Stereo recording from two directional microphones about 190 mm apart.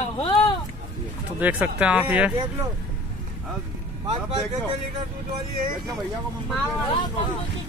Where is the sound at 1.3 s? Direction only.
10° right (ahead or behind).